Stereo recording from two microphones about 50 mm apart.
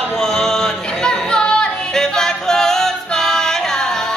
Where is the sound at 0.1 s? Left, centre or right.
Centre.